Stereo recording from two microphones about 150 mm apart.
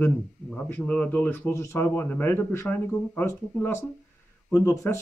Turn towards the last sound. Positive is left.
turn(degrees=20)  # may be behind; listen again after turning